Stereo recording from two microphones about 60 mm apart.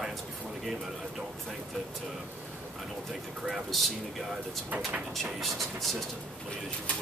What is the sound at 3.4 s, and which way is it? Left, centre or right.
Speech, centre.